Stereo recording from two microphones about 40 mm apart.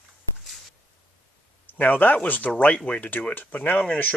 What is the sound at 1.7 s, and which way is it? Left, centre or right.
Speech, left.